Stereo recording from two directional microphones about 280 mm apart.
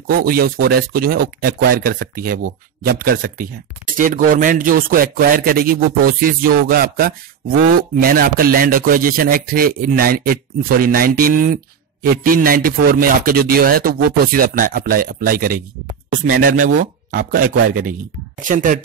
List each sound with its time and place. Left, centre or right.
0.0 s speech: right